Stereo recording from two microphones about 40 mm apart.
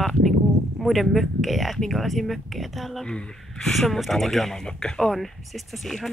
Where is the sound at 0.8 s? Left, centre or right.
Centre.